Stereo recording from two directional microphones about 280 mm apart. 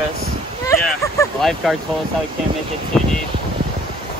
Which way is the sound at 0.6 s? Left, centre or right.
Centre.